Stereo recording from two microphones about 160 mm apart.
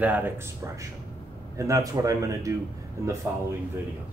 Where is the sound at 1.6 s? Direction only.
20° right (ahead or behind).